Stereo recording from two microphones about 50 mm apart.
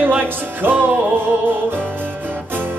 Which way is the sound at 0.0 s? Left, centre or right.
Right.